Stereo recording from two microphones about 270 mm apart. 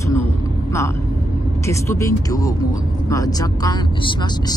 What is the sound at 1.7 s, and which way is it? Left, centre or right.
Speech, centre.